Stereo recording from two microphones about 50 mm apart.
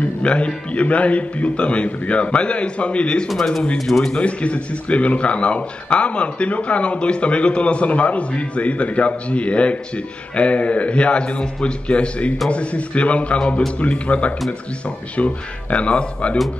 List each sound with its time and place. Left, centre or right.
0.0 s music: left
0.7 s speech: left
3.7 s a man's voice: centre
4.1 s speech: left